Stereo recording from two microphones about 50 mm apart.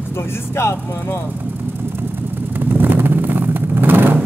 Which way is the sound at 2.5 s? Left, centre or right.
Right.